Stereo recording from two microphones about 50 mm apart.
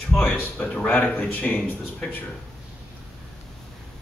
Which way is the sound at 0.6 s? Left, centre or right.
Left.